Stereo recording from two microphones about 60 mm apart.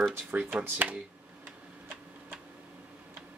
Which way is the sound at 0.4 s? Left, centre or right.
Right.